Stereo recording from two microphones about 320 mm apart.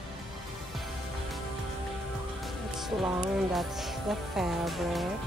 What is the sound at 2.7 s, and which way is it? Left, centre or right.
Music, centre.